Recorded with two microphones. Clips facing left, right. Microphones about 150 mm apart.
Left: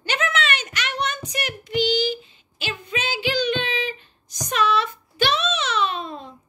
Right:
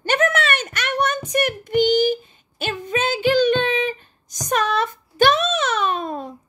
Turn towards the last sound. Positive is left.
turn(degrees=-50)  # may be behind; listen again after turning